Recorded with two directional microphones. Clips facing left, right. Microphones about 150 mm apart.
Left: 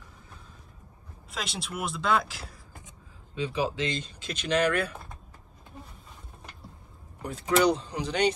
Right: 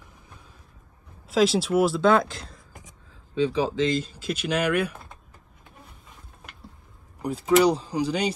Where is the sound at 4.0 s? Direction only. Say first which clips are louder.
Right 8 dB; 5° right (ahead or behind).